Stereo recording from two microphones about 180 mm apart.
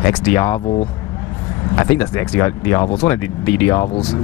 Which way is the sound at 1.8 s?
10° left (ahead or behind).